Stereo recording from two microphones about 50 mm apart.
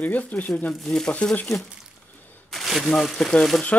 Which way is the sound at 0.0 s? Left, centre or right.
Left.